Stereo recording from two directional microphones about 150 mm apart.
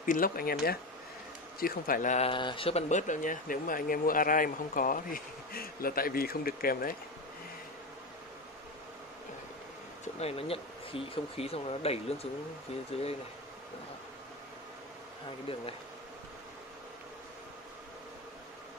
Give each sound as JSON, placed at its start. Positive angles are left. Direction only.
{"t": 0.0, "sound": "speech", "side_deg": 70}
{"t": 1.6, "sound": "a man's voice", "side_deg": 65}
{"t": 2.2, "sound": "speech", "side_deg": 35}
{"t": 2.9, "sound": "speech", "side_deg": 55}
{"t": 10.2, "sound": "speech", "side_deg": 40}